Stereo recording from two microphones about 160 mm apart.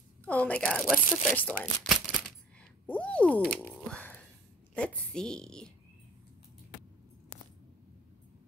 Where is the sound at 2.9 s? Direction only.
10° left (ahead or behind).